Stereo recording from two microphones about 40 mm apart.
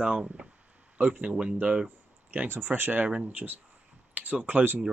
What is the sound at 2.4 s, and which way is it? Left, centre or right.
Speech, right.